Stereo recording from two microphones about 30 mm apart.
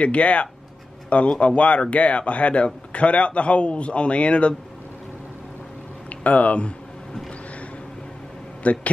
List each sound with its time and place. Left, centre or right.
0.0 s a man's voice: left
6.0 s a sound: left
8.6 s a man's voice: left